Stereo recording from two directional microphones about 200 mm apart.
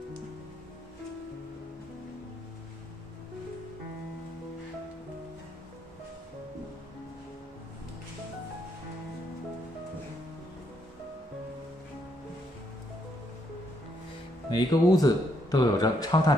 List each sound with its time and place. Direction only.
14.5 s speech: 20° left (ahead or behind)